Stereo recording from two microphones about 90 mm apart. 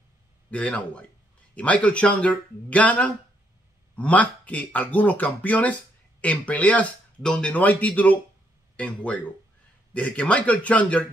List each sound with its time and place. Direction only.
0.5 s speech: 15° left (ahead or behind)